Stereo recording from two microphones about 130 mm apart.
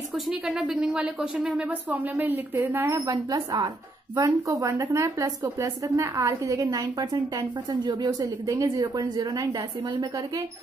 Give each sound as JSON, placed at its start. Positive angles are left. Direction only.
{"t": 0.3, "sound": "speech", "side_deg": -5}